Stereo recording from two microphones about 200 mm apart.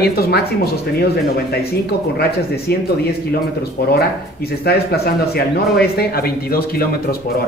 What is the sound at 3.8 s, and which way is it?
Speech, 55° left (ahead or behind).